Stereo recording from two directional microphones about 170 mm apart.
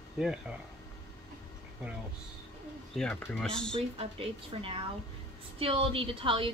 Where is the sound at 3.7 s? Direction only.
35° right (ahead or behind).